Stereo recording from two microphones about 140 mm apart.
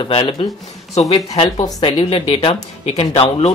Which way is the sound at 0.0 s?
40° left (ahead or behind).